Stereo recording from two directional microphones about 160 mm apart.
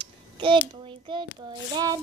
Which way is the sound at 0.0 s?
30° right (ahead or behind).